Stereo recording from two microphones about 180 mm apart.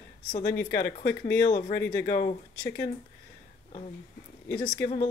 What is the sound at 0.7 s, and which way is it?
Speech, 60° left (ahead or behind).